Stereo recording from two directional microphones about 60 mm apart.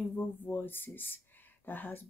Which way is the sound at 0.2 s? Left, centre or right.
Left.